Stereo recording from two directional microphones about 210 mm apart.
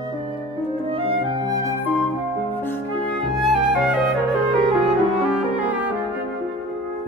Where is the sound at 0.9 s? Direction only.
25° right (ahead or behind).